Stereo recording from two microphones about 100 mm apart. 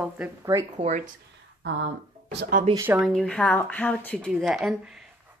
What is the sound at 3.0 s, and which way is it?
Speech, 5° left (ahead or behind).